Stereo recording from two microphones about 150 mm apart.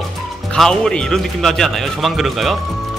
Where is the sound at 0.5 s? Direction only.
5° left (ahead or behind).